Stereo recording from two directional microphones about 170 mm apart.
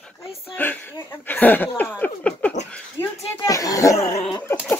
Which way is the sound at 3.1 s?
20° left (ahead or behind).